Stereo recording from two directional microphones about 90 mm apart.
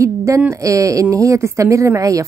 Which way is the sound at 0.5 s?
35° right (ahead or behind).